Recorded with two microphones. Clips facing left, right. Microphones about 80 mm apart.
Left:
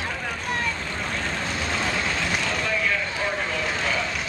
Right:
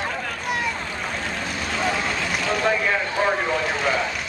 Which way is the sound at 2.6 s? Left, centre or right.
Right.